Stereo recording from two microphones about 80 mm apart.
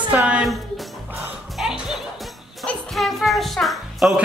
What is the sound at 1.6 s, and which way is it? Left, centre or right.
Music, centre.